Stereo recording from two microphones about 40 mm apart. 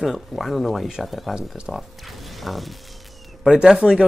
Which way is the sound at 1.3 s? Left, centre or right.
Right.